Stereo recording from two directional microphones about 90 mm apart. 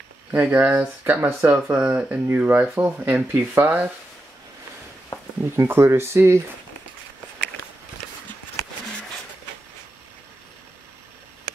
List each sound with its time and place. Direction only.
0.3 s speech: 20° right (ahead or behind)
5.4 s speech: 25° right (ahead or behind)